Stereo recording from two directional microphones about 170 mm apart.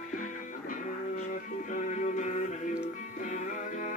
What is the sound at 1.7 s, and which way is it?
Music, 50° left (ahead or behind).